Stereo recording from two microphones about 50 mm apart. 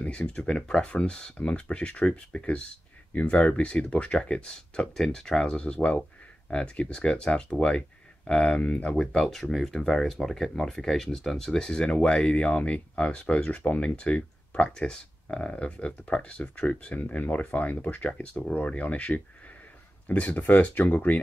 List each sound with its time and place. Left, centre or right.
0.0 s speech: centre
5.6 s speech: left